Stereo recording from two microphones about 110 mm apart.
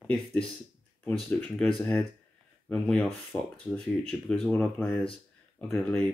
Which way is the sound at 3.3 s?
20° left (ahead or behind).